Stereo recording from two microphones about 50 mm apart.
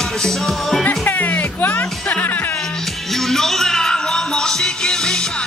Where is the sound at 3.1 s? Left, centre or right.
Centre.